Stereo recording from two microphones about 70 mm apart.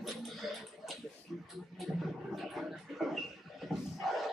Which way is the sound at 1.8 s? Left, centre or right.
Centre.